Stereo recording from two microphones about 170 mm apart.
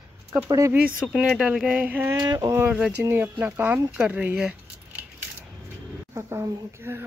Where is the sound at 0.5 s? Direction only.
20° right (ahead or behind).